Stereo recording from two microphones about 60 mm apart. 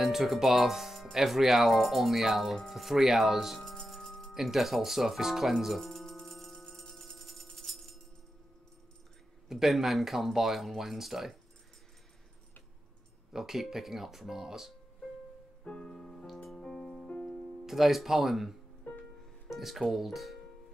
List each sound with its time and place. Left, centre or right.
0.0 s speech: centre
4.3 s music: centre
9.5 s speech: centre
13.3 s speech: centre
15.6 s music: centre
15.9 s music: centre
17.2 s music: left
17.6 s speech: centre
18.9 s music: left
19.5 s speech: centre